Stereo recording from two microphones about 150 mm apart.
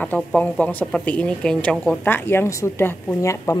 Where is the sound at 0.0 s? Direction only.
10° left (ahead or behind).